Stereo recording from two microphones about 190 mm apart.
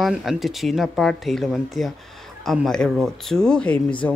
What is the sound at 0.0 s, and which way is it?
Speech, centre (ahead or behind).